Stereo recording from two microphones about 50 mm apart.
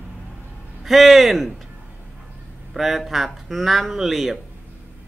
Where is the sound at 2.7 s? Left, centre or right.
Centre.